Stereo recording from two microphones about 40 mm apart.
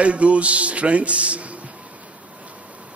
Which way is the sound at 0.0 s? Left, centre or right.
Right.